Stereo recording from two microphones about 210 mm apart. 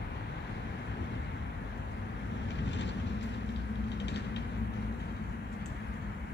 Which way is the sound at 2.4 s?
55° left (ahead or behind).